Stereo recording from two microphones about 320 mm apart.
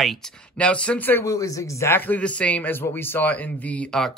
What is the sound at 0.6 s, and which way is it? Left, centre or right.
Speech, centre.